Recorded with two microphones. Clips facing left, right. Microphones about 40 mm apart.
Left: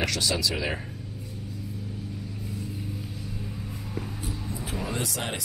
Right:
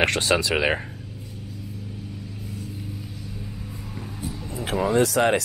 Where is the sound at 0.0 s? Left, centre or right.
Right.